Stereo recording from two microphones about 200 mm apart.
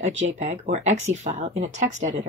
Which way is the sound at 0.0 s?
35° right (ahead or behind).